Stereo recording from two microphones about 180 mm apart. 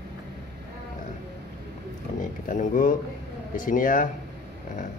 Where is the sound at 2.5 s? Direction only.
45° left (ahead or behind).